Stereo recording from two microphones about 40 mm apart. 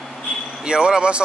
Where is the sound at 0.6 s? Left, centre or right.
Right.